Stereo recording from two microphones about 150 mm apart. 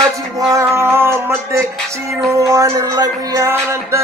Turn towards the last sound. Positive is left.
turn(degrees=-20)  # may be behind; listen again after turning